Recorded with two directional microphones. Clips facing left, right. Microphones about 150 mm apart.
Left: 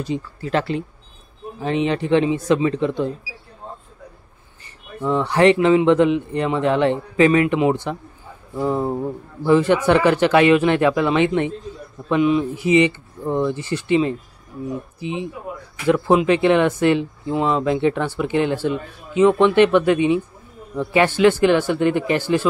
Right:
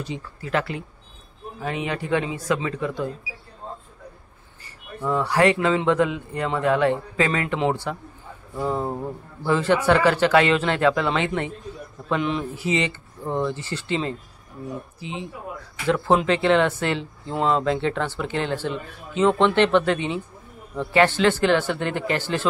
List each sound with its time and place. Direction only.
0.0 s speech: 35° left (ahead or behind)
5.0 s speech: 20° left (ahead or behind)
12.1 s speech: 10° left (ahead or behind)